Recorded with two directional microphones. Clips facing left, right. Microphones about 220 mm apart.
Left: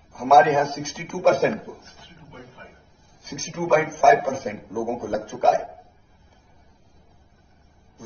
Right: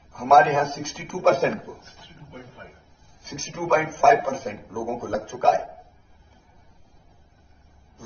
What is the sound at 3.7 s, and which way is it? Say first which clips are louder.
A man's voice: left 1 dB; 15° left (ahead or behind).